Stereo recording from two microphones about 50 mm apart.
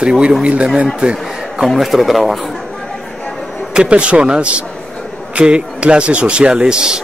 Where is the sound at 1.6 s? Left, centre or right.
Centre.